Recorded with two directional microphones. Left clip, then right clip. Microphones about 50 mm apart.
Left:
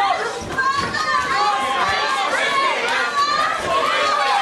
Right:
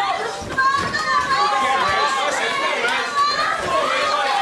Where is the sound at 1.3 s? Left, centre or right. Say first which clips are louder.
Right 1 dB; centre.